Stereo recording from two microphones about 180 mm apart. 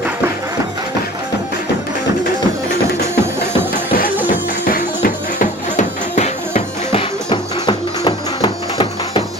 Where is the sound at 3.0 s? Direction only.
15° right (ahead or behind).